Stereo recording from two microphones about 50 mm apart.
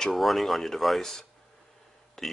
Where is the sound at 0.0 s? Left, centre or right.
Centre.